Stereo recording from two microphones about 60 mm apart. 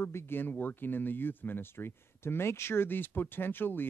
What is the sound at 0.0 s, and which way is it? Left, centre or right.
Speech, left.